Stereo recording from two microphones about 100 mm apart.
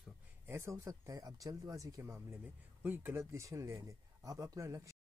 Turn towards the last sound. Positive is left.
turn(degrees=-35)  # may be behind; listen again after turning